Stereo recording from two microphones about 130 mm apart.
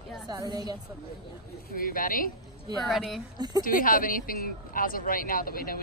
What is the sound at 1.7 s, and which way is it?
Speech, 90° left.